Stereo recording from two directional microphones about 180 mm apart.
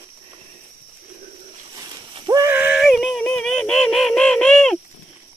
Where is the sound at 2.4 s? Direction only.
10° right (ahead or behind).